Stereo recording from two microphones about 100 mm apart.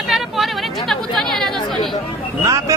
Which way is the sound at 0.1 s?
Centre (ahead or behind).